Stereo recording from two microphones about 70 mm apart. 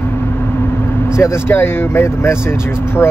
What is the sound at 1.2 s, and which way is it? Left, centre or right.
Speech, left.